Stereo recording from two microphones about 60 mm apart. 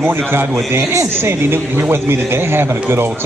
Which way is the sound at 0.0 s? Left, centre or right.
Right.